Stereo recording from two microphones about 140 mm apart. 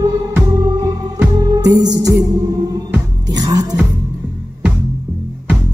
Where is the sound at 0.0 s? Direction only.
25° right (ahead or behind).